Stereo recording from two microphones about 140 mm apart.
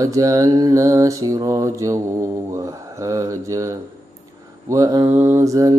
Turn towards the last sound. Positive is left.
turn(degrees=-25)  # may be behind; listen again after turning